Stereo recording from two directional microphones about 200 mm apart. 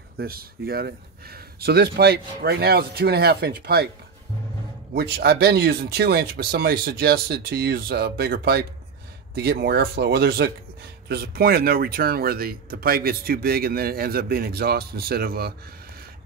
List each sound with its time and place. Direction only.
0.2 s speech: 50° right (ahead or behind)
4.9 s speech: 50° right (ahead or behind)